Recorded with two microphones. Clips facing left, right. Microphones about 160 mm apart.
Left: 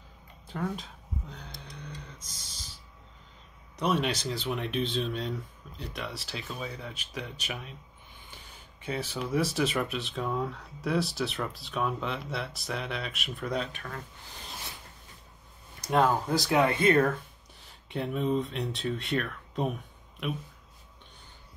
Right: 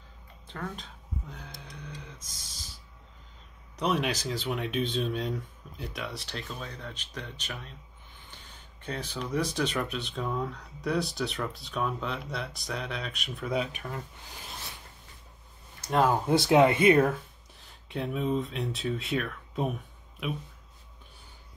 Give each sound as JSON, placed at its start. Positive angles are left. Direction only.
{"t": 0.5, "sound": "speech", "side_deg": 10}
{"t": 1.3, "sound": "a sound", "side_deg": -5}
{"t": 3.8, "sound": "speech", "side_deg": 0}
{"t": 8.8, "sound": "speech", "side_deg": 5}
{"t": 15.9, "sound": "speech", "side_deg": 0}
{"t": 16.3, "sound": "speech", "side_deg": -25}
{"t": 16.9, "sound": "speech", "side_deg": -5}